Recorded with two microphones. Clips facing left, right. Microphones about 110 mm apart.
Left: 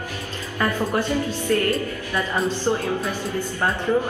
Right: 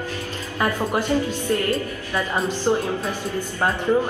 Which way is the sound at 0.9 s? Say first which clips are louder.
Right 1 dB; 15° right (ahead or behind).